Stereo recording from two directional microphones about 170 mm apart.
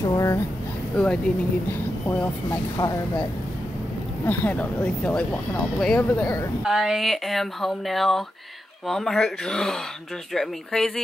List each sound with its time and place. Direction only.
0.0 s a sound: 20° left (ahead or behind)
1.0 s speech: 5° left (ahead or behind)
2.1 s speech: 10° left (ahead or behind)
4.3 s speech: 10° left (ahead or behind)